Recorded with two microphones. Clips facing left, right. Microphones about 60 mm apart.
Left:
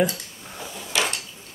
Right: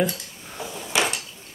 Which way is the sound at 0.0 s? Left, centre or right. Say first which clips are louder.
Left 1 dB; centre.